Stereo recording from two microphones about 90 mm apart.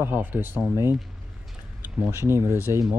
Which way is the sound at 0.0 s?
25° right (ahead or behind).